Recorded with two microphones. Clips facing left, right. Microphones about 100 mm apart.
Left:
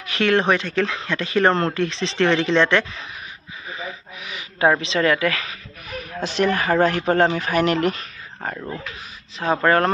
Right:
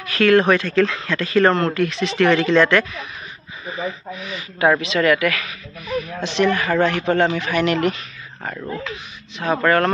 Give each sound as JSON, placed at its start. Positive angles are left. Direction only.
{"t": 0.0, "sound": "speech", "side_deg": 20}
{"t": 4.2, "sound": "speech", "side_deg": 15}
{"t": 4.6, "sound": "speech", "side_deg": 30}
{"t": 5.9, "sound": "speech", "side_deg": 45}
{"t": 9.4, "sound": "speech", "side_deg": 30}